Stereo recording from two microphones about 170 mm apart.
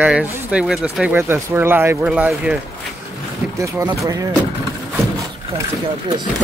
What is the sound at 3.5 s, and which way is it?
Speech, 15° right (ahead or behind).